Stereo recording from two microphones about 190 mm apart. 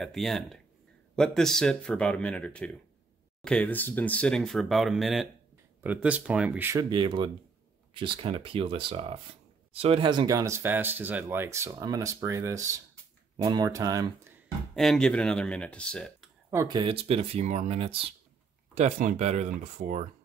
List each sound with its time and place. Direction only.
0.0 s speech: centre (ahead or behind); by 14.3 s 20° right (ahead or behind)
14.8 s speech: 5° left (ahead or behind)
16.4 s speech: 20° right (ahead or behind)
18.8 s speech: 40° right (ahead or behind)